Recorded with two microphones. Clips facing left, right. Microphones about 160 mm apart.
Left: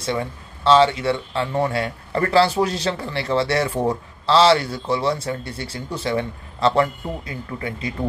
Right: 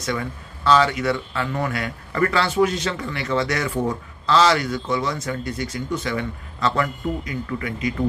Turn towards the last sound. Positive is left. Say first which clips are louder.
# right 2 dB
turn(degrees=30)  # may be behind; listen again after turning